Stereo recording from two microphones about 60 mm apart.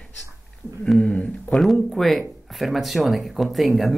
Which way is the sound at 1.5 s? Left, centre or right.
Centre.